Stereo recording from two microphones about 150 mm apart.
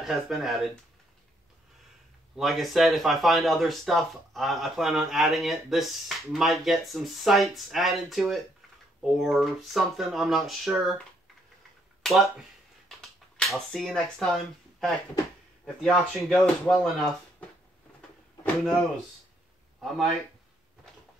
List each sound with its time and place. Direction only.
0.0 s speech: centre (ahead or behind)
2.3 s speech: centre (ahead or behind)
12.0 s a sound: centre (ahead or behind)
13.4 s speech: 5° left (ahead or behind)